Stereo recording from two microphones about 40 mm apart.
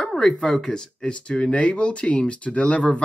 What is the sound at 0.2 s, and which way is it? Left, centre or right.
Speech, left.